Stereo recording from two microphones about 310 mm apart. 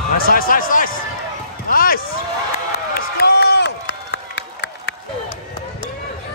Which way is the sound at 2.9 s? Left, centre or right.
Left.